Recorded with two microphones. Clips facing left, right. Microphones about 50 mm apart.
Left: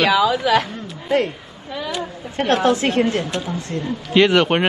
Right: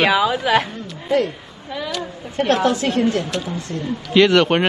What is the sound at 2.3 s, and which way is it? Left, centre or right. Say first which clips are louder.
Speech: even; left.